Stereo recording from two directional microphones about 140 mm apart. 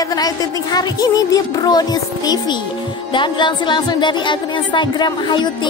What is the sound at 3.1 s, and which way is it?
Speech, 35° left (ahead or behind).